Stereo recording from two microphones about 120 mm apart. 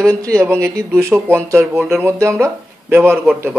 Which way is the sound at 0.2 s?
30° right (ahead or behind).